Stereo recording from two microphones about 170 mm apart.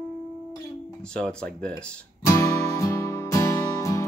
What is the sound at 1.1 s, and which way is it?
Speech, 5° left (ahead or behind).